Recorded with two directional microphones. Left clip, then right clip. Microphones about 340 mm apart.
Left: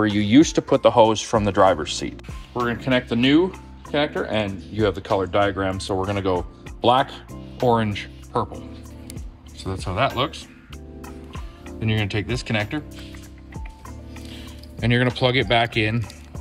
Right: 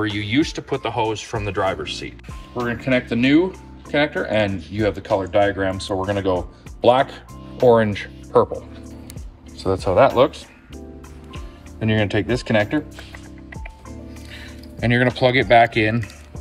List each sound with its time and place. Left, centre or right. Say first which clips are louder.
0.0 s speech: left 4 dB; left
2.5 s speech: right 1 dB; centre
9.6 s speech: right 8 dB; centre
14.8 s speech: right 3 dB; centre